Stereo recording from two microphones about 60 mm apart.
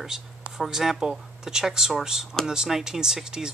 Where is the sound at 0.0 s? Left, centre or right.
Centre.